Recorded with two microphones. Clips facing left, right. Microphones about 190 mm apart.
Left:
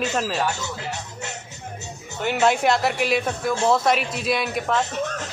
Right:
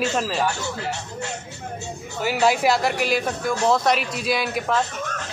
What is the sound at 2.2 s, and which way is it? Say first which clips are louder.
A man's voice: even; 5° right (ahead or behind).